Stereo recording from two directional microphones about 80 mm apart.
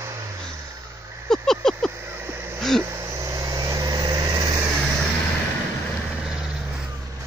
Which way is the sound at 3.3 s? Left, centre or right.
Right.